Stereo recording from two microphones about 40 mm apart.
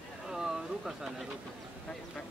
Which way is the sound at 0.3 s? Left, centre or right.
Centre.